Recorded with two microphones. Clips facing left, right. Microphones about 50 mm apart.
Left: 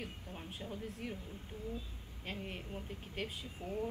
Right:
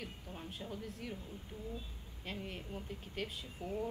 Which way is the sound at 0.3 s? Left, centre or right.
Centre.